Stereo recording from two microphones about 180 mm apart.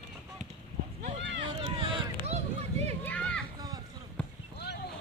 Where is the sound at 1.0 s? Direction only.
80° right.